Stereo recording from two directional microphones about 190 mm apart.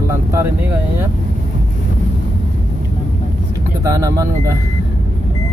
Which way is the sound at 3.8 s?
15° right (ahead or behind).